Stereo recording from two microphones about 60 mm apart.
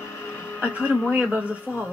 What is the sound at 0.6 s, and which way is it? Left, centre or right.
Speech, centre.